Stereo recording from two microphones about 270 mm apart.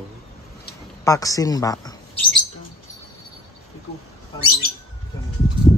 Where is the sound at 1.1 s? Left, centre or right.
Centre.